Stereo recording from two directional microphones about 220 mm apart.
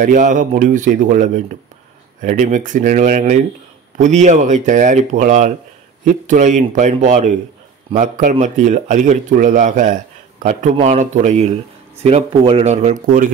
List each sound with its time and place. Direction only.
0.0 s speech: 35° right (ahead or behind)